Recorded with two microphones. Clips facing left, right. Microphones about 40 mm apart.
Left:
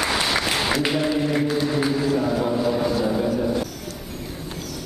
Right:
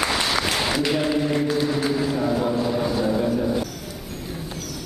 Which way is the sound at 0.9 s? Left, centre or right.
Centre.